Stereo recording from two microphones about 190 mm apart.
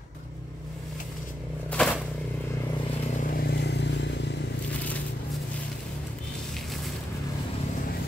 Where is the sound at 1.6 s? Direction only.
5° left (ahead or behind).